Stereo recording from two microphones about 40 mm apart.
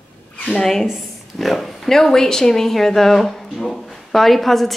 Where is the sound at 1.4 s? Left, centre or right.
Centre.